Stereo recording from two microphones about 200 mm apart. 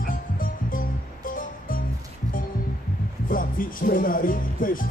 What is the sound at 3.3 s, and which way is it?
Music, 45° left (ahead or behind).